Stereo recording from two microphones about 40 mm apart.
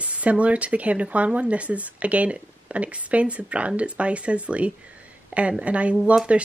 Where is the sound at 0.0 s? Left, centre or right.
Right.